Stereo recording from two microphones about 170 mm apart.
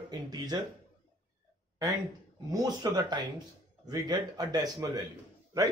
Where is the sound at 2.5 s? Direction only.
25° right (ahead or behind).